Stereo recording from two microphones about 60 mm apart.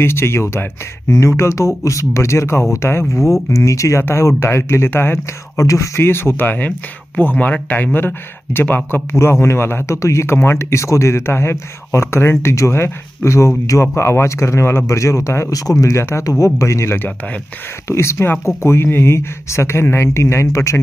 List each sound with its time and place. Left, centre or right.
0.0 s speech: left
3.2 s speech: centre
3.4 s speech: left
5.6 s speech: left
6.0 s speech: left
9.2 s speech: left
9.8 s speech: left
15.0 s speech: left
15.5 s speech: left